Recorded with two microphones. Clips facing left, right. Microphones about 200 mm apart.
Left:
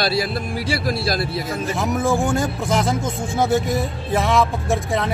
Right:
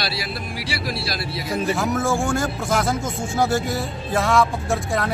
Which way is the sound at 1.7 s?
20° left (ahead or behind).